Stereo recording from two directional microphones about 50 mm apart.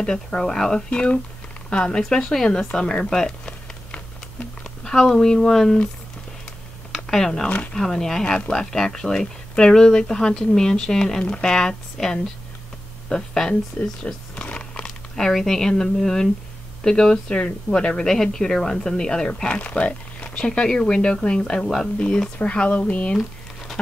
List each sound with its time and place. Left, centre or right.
0.0 s speech: centre
2.0 s speech: centre
7.1 s speech: centre
7.4 s speech: left
7.7 s speech: centre
13.7 s a sound: left
15.1 s speech: centre
19.5 s speech: left